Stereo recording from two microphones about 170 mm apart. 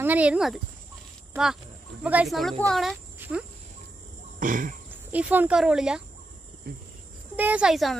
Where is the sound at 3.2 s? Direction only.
10° right (ahead or behind).